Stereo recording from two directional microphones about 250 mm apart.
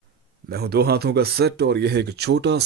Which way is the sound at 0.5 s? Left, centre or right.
Right.